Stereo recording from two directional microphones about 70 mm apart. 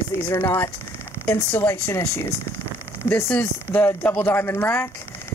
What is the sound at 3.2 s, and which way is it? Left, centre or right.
Speech, left.